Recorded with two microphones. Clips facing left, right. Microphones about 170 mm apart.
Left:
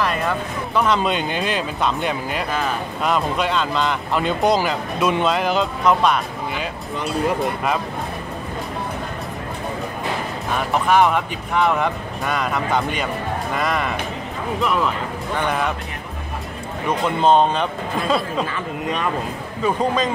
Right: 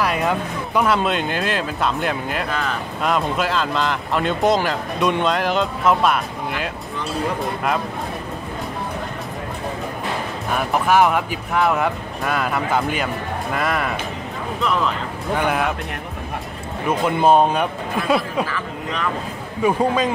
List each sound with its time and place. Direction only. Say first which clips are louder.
0.0 s speech: right 1 dB; 10° right (ahead or behind)
10.5 s speech: even; 5° right (ahead or behind)
17.0 s speech: right 1 dB; 10° right (ahead or behind)
18.5 s speech: left 2 dB; 20° left (ahead or behind)
19.6 s speech: right 2 dB; 10° right (ahead or behind)